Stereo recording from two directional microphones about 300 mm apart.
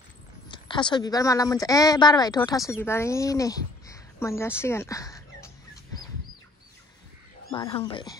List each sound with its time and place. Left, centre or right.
0.5 s speech: centre
7.5 s speech: centre